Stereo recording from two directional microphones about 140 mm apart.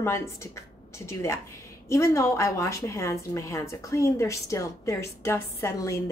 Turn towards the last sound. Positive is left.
turn(degrees=25)  # may be behind; listen again after turning